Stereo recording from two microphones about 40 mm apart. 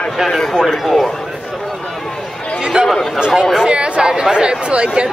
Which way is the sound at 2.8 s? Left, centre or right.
Right.